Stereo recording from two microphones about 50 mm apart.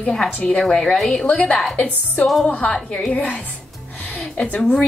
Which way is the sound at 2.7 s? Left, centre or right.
Centre.